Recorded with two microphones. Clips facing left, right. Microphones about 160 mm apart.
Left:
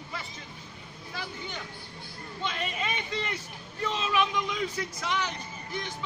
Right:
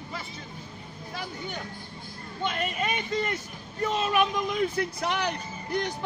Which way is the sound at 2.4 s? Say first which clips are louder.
Right 4 dB; 45° right (ahead or behind).